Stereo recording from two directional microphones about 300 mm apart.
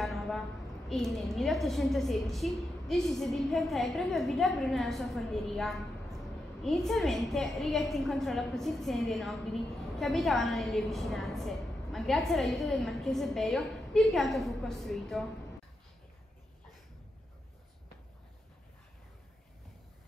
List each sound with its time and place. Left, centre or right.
0.0 s a woman's voice: centre